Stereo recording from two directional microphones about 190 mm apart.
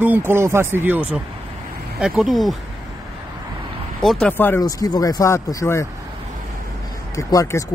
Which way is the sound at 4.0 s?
Centre (ahead or behind).